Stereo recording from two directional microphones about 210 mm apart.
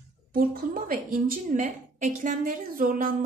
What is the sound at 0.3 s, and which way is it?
A woman's voice, 45° right (ahead or behind).